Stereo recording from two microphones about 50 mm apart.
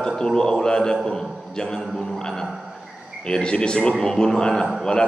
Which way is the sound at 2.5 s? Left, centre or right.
Centre.